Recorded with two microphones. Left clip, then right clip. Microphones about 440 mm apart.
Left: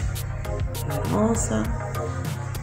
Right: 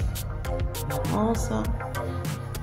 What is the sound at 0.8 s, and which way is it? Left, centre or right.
Music, centre.